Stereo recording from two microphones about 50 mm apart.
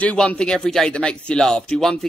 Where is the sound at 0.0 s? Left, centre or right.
Left.